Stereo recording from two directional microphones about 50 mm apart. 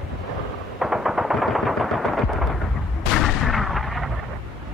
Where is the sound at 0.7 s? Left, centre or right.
Centre.